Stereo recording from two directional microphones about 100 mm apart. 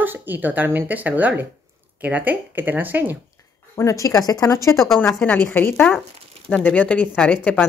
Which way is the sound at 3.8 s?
35° left (ahead or behind).